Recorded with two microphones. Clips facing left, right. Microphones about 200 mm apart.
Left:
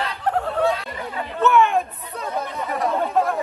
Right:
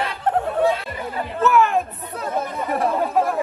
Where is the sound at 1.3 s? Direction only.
Centre (ahead or behind).